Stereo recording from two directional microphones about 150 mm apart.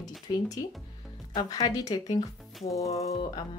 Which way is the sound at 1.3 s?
25° left (ahead or behind).